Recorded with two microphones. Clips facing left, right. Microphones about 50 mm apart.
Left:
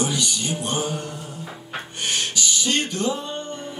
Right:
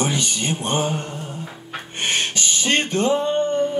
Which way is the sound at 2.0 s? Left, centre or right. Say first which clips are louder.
Right 3 dB; right.